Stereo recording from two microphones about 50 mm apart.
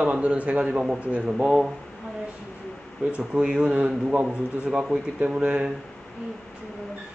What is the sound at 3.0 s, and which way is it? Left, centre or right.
A man's voice, right.